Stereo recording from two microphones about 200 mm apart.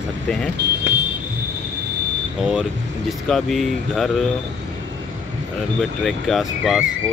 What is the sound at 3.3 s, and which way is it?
Speech, centre (ahead or behind).